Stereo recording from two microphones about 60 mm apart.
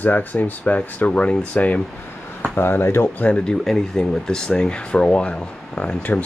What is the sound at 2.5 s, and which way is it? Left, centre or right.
Speech, left.